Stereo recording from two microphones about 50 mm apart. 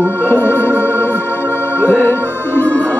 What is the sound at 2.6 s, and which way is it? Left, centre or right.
Music, left.